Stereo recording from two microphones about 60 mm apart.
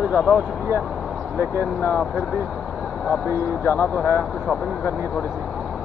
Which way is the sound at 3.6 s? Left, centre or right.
Left.